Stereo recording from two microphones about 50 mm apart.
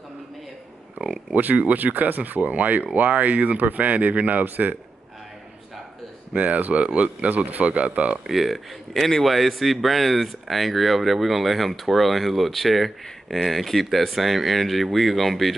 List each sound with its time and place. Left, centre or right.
1.0 s speech: centre
1.3 s speech: right
6.3 s speech: right
8.3 s a man's voice: centre